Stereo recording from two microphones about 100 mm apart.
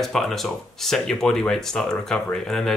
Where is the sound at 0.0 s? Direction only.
5° left (ahead or behind).